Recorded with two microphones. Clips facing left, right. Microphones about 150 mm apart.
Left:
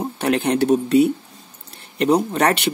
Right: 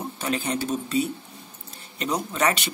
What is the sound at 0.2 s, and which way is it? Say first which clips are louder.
Speech: left 9 dB; 65° left (ahead or behind).